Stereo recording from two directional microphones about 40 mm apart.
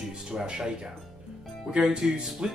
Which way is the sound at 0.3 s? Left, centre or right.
Centre.